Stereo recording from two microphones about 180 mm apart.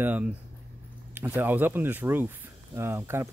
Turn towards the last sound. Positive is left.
turn(degrees=-15)  # may be behind; listen again after turning